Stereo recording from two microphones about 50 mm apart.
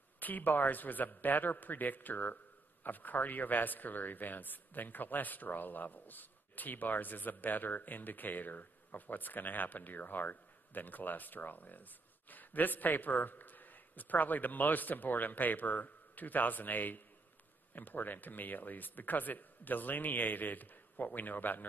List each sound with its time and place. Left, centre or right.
0.2 s speech: left